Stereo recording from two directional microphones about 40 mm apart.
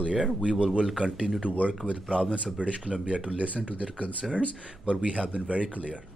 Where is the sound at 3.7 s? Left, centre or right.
Left.